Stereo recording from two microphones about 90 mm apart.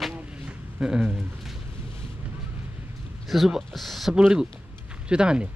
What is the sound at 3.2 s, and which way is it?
Speech, centre (ahead or behind).